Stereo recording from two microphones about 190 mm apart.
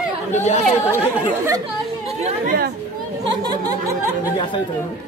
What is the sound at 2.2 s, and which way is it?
Speech, 45° right (ahead or behind).